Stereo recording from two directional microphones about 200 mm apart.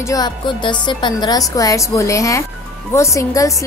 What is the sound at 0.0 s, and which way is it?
A woman's voice, 20° left (ahead or behind).